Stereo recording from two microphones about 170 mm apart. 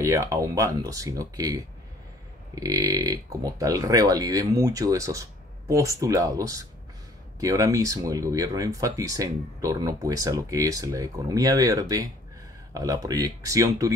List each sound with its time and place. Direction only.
0.0 s speech: 15° right (ahead or behind)